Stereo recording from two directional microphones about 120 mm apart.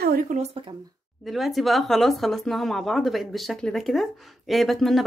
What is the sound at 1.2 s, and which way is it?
A woman's voice, centre (ahead or behind).